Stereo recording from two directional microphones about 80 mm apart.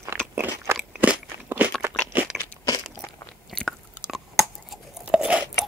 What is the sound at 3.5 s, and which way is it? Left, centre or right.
Chewing, centre.